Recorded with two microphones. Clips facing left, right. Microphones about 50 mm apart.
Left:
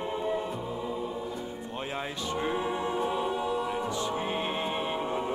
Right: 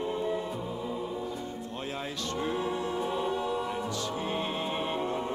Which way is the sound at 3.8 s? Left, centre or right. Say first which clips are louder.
Left 2 dB; left.